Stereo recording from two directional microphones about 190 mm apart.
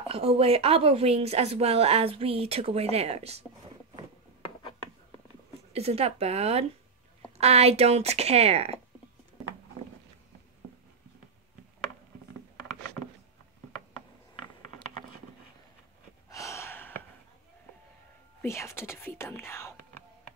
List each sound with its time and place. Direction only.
0.1 s a woman's voice: 30° right (ahead or behind)
5.7 s a woman's voice: 30° right (ahead or behind)
16.3 s gasp: 15° left (ahead or behind)
18.4 s speech: 15° left (ahead or behind)